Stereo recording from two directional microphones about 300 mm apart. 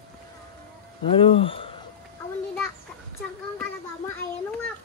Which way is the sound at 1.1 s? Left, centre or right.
Centre.